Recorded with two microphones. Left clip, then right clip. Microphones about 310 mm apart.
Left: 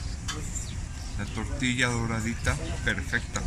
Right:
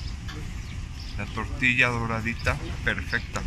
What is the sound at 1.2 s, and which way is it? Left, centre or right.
Speech, centre.